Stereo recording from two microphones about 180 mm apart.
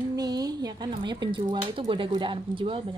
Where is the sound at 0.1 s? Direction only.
20° right (ahead or behind).